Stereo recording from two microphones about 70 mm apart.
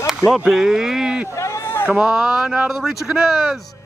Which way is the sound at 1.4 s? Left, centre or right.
Left.